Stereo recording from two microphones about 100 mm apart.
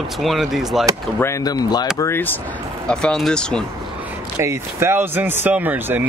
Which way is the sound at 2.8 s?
5° left (ahead or behind).